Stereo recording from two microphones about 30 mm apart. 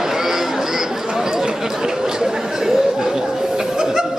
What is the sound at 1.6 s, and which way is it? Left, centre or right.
Chatter, centre.